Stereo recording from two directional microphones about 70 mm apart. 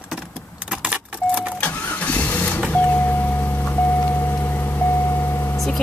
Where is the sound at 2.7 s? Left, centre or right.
Left.